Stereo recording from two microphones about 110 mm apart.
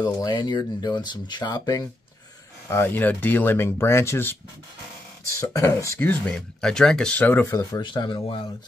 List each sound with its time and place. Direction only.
0.0 s speech: 40° left (ahead or behind)
2.7 s speech: 20° left (ahead or behind)
5.5 s speech: 25° left (ahead or behind)
6.0 s speech: 10° left (ahead or behind)
7.8 s speech: 45° left (ahead or behind)